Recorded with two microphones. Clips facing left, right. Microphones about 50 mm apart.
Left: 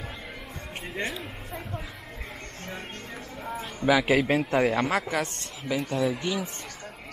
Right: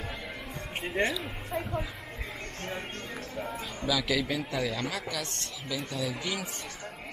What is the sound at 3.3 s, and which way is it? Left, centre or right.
Speech, centre.